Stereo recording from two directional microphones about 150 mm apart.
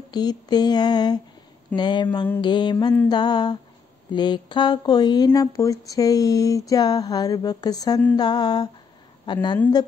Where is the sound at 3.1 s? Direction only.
30° left (ahead or behind).